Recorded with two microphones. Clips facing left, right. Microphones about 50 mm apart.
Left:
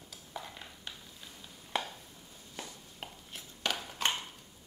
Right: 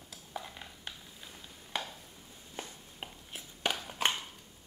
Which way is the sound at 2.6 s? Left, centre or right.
Right.